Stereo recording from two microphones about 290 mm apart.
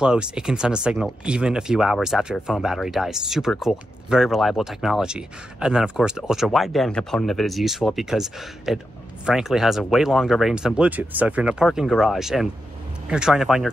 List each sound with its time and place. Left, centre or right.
0.0 s speech: centre